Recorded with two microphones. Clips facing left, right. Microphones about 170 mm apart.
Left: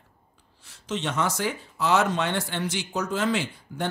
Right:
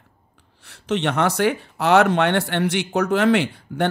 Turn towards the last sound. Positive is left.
turn(degrees=-65)  # may be behind; listen again after turning